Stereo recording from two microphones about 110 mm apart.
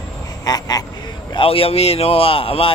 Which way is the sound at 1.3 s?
55° left (ahead or behind).